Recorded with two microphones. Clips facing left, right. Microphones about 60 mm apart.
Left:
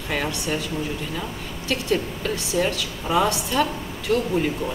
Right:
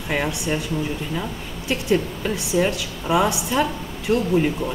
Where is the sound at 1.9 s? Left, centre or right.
Centre.